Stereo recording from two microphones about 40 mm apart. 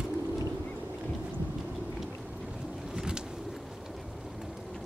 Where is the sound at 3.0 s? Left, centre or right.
Centre.